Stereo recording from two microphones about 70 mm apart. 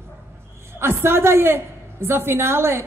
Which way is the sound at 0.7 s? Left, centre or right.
Right.